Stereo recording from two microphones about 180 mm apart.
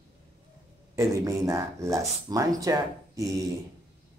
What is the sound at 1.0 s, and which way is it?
Speech, 15° right (ahead or behind).